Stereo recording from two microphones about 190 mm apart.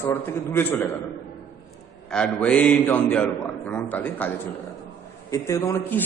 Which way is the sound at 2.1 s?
5° left (ahead or behind).